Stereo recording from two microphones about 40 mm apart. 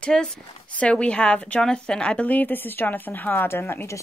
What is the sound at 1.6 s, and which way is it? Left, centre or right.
Speech, centre.